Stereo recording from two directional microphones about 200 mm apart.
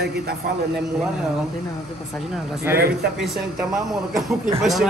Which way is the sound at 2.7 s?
50° right (ahead or behind).